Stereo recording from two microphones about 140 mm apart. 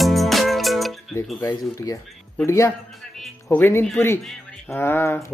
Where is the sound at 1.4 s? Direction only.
25° left (ahead or behind).